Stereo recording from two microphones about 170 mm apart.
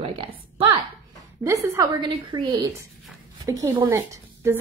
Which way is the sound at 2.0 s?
25° right (ahead or behind).